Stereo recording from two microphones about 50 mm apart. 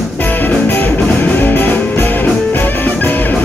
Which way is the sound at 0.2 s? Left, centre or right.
Left.